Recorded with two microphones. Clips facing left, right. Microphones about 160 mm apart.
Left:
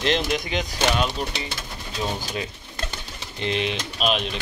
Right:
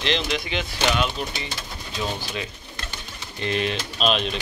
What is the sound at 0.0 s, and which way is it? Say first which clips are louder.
Speech: left 2 dB; 45° left (ahead or behind).